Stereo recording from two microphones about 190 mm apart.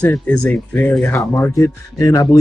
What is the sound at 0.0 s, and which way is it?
Speech, 5° left (ahead or behind).